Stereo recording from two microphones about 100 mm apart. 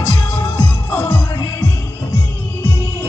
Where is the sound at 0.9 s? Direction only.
15° left (ahead or behind).